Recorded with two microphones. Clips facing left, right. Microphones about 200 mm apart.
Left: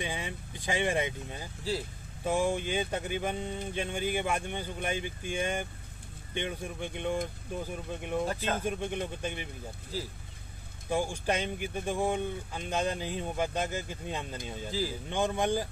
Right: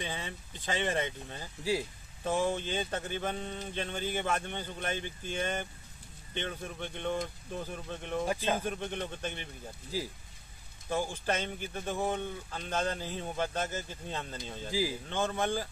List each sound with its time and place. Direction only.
0.0 s speech: 15° left (ahead or behind)
1.6 s speech: 15° right (ahead or behind)
2.2 s speech: 10° left (ahead or behind)
9.9 s speech: 10° right (ahead or behind)
10.9 s speech: 15° left (ahead or behind)
14.7 s speech: 10° right (ahead or behind)
15.0 s speech: 15° left (ahead or behind)